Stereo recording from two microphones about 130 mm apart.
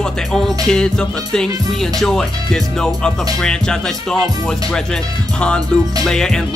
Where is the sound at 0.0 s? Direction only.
5° left (ahead or behind).